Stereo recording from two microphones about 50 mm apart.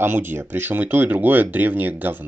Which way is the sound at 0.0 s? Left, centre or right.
Right.